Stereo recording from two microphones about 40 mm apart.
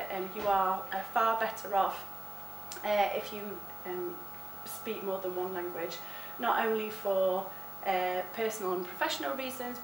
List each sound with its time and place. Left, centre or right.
0.0 s a woman's voice: centre